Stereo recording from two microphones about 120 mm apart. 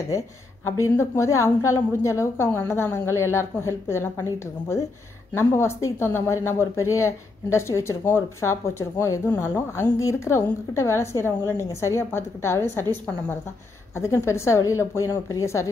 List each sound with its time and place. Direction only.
0.7 s a woman's voice: 20° left (ahead or behind)
13.9 s a woman's voice: 20° left (ahead or behind)